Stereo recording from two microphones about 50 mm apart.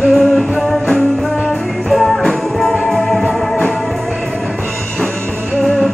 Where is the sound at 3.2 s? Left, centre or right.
Left.